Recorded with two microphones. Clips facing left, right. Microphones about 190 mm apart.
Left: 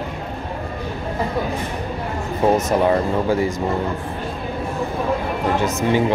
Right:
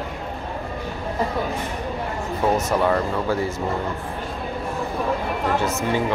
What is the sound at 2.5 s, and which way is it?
Speech, 20° left (ahead or behind).